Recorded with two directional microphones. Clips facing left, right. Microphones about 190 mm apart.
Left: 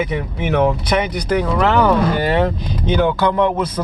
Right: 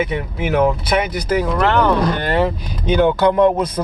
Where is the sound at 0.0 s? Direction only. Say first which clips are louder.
Even; 5° right (ahead or behind).